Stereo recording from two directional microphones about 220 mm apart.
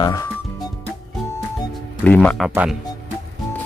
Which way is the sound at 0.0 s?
15° left (ahead or behind).